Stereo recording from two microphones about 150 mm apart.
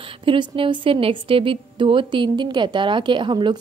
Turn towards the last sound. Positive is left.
turn(degrees=-30)  # may be behind; listen again after turning